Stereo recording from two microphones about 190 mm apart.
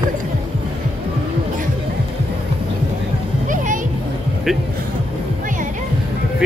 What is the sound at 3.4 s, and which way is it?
Music, 45° right (ahead or behind).